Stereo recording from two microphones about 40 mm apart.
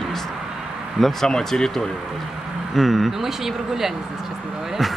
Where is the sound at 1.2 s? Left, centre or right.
Centre.